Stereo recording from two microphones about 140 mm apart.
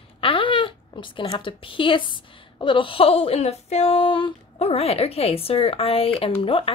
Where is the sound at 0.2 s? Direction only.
40° left (ahead or behind).